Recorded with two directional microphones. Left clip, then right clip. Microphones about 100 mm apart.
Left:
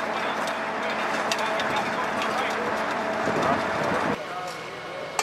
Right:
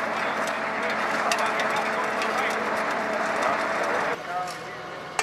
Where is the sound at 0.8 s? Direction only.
15° right (ahead or behind).